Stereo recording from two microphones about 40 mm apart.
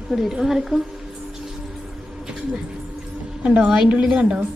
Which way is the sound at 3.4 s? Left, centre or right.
Right.